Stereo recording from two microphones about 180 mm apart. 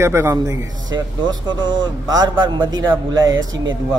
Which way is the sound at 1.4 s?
25° right (ahead or behind).